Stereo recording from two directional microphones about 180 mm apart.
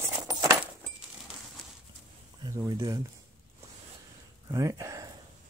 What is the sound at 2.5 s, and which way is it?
Speech, 15° right (ahead or behind).